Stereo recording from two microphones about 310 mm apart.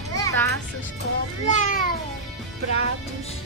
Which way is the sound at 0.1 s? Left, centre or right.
Centre.